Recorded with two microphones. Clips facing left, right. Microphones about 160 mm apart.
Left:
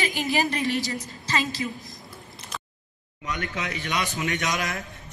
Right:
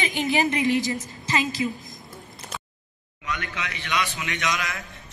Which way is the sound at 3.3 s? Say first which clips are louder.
Left 1 dB; 40° left (ahead or behind).